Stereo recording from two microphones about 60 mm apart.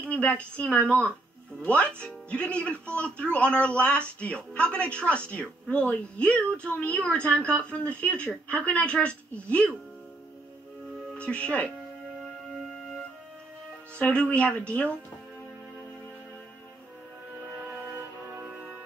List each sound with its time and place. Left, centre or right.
0.0 s speech: left
11.1 s speech: centre
13.9 s speech: left